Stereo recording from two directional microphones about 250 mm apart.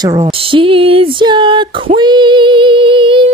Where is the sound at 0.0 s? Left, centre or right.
Centre.